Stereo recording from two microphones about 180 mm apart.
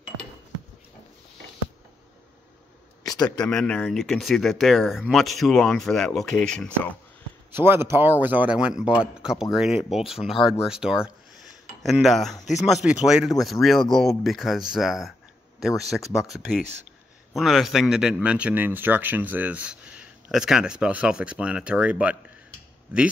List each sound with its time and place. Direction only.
3.0 s a sound: 20° left (ahead or behind)
3.4 s a man's voice: 5° left (ahead or behind)
7.5 s a man's voice: 10° right (ahead or behind)